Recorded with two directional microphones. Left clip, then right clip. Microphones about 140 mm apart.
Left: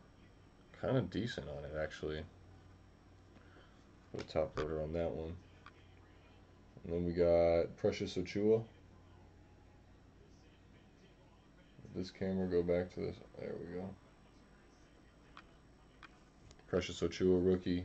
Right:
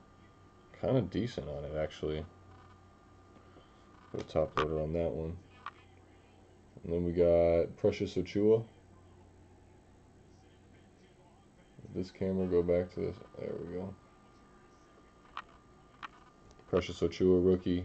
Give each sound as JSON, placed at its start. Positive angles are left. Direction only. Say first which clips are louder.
{"t": 0.7, "sound": "speech", "louder": "right 5 dB", "side_deg": 0}
{"t": 4.1, "sound": "speech", "louder": "right 5 dB", "side_deg": -5}
{"t": 6.9, "sound": "speech", "louder": "right 4 dB", "side_deg": -15}
{"t": 11.9, "sound": "speech", "louder": "right 5 dB", "side_deg": -20}
{"t": 16.7, "sound": "speech", "louder": "right 5 dB", "side_deg": -5}